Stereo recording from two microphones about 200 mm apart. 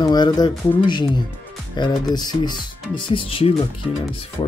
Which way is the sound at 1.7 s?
20° left (ahead or behind).